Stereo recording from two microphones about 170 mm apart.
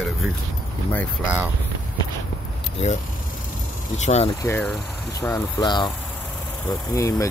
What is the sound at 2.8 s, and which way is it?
Speech, 45° left (ahead or behind).